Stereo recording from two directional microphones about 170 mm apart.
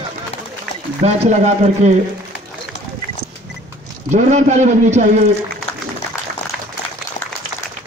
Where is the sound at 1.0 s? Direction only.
40° right (ahead or behind).